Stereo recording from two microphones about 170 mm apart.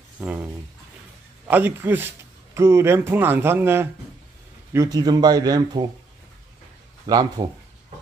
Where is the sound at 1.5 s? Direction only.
10° right (ahead or behind).